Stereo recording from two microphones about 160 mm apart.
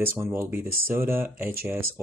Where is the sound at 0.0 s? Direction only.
15° right (ahead or behind).